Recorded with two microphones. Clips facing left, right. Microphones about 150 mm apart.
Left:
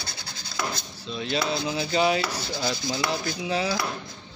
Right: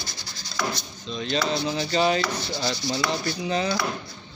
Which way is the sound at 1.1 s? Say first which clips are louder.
Right 1 dB; 10° left (ahead or behind).